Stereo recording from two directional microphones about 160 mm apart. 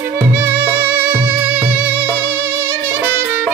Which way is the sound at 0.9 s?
10° right (ahead or behind).